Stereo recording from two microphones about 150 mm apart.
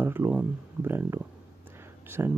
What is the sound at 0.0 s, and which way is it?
Speech, 15° right (ahead or behind).